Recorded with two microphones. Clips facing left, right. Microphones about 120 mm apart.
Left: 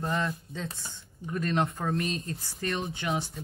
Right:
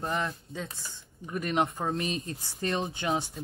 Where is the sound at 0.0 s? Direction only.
15° right (ahead or behind).